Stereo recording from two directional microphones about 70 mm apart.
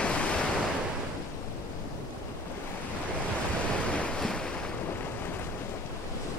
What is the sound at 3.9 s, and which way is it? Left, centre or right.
Waves, centre.